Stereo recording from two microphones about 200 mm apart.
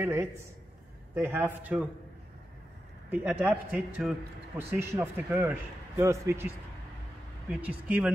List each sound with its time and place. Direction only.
0.0 s a man's voice: 15° right (ahead or behind)
3.1 s a man's voice: 10° right (ahead or behind)